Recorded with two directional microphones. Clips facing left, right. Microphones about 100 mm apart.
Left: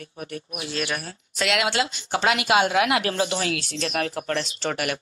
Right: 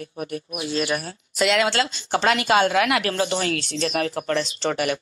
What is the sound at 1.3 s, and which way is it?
Speech, 5° left (ahead or behind).